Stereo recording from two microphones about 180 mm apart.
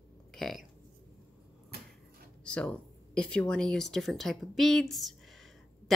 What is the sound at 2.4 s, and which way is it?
Speech, 5° left (ahead or behind).